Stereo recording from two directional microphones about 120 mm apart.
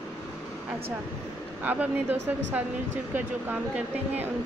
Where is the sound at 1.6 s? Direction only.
15° right (ahead or behind).